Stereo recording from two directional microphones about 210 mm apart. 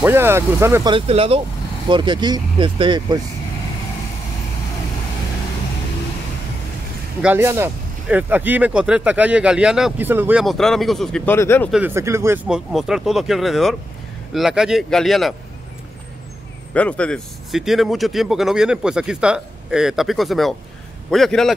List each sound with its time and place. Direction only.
0.0 s speech: 10° right (ahead or behind)
0.9 s speech: 25° right (ahead or behind)
7.2 s speech: 10° right (ahead or behind); by 11.7 s 10° left (ahead or behind)
11.7 s speech: 10° right (ahead or behind)
16.7 s speech: 5° left (ahead or behind)